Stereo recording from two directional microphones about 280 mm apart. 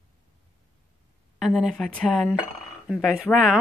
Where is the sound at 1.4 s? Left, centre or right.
Centre.